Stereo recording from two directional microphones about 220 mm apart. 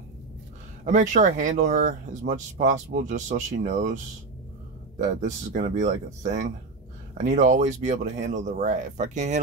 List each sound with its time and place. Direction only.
0.8 s speech: 35° right (ahead or behind)
7.2 s speech: 35° right (ahead or behind)